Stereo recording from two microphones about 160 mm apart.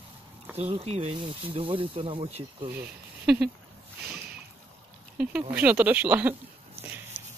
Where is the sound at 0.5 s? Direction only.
40° right (ahead or behind).